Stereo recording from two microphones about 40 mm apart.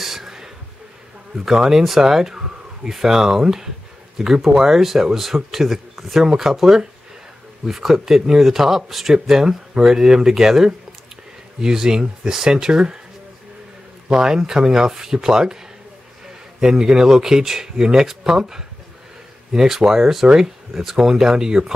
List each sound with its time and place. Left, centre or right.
0.0 s a sound: centre
1.5 s speech: centre
14.0 s speech: centre
16.5 s speech: centre